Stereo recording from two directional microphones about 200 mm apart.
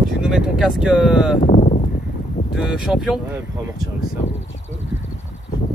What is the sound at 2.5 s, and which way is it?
Speech, centre (ahead or behind).